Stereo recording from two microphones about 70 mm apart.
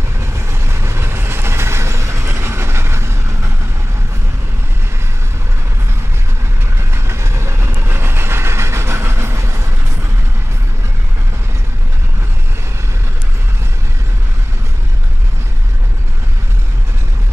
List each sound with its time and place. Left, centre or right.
0.2 s vehicle: right
6.9 s train: right